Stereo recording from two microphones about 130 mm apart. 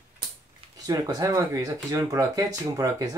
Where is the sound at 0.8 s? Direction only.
30° right (ahead or behind).